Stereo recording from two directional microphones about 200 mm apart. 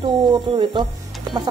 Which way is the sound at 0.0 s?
20° right (ahead or behind).